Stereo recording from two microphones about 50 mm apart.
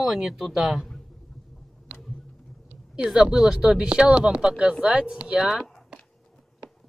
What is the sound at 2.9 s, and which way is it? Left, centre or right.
Speech, centre.